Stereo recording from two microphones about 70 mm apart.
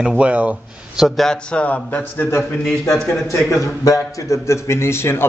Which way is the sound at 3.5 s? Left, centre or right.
Left.